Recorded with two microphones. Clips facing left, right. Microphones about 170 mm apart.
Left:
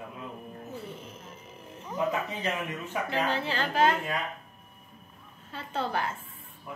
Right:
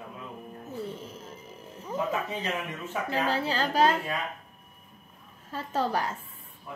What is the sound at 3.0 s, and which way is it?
Speech, 35° right (ahead or behind).